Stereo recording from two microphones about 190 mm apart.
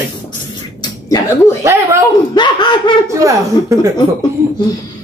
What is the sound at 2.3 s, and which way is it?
Speech, 25° left (ahead or behind).